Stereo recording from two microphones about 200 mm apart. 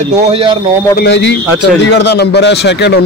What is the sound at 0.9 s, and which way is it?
A man's voice, 60° left (ahead or behind).